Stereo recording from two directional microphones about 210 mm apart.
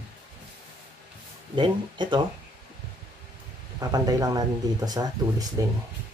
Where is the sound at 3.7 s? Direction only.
15° right (ahead or behind).